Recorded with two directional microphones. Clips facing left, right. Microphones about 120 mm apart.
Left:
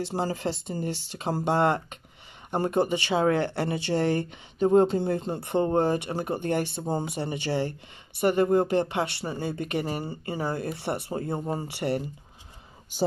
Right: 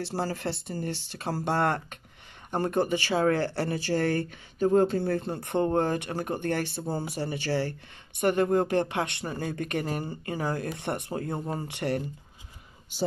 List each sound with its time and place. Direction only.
0.0 s speech: 15° left (ahead or behind)
8.2 s speech: 10° left (ahead or behind)